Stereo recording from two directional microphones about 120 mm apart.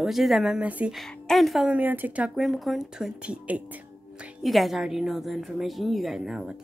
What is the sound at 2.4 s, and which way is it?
A woman's voice, centre (ahead or behind).